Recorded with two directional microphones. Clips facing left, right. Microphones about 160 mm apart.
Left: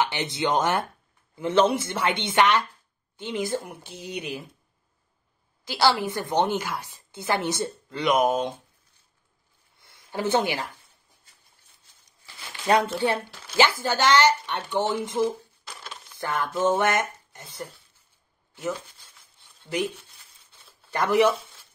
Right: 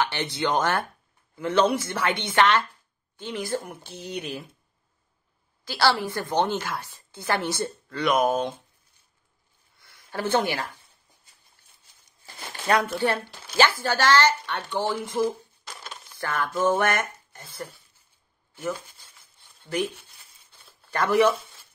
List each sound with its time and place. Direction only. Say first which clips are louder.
0.0 s a woman's voice: left 1 dB; 20° left (ahead or behind)
5.7 s a woman's voice: left 1 dB; 20° left (ahead or behind)
9.8 s speech: left 1 dB; 20° left (ahead or behind)
12.3 s a sound: right 4 dB; 50° right (ahead or behind)
12.6 s a woman's voice: left 1 dB; 20° left (ahead or behind)
15.1 s dishes: even; 5° left (ahead or behind)
16.2 s speech: even; 20° left (ahead or behind)
20.9 s speech: even; 20° left (ahead or behind)